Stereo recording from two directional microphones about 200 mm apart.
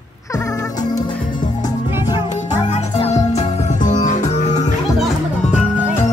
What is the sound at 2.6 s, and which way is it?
Music, 35° left (ahead or behind).